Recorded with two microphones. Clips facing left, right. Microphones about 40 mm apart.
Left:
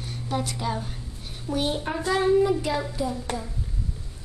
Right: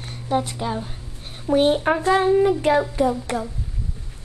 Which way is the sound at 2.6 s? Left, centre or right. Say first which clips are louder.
Right 9 dB; right.